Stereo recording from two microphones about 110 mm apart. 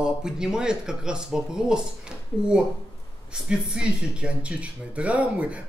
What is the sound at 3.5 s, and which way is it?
Speech, 10° right (ahead or behind).